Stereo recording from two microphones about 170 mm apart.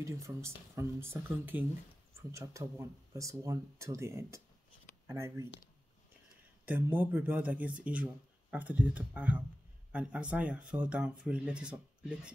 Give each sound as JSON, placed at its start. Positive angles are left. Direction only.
{"t": 0.0, "sound": "speech", "side_deg": -15}
{"t": 6.6, "sound": "speech", "side_deg": -10}